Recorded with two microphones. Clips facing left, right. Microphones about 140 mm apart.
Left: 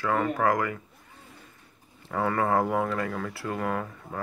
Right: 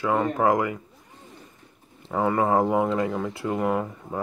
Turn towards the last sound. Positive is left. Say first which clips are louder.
# right 5 dB
turn(degrees=-20)  # may be behind; listen again after turning